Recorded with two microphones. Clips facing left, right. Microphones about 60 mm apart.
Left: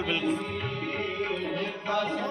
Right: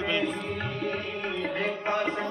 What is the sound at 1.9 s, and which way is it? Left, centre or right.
Music, right.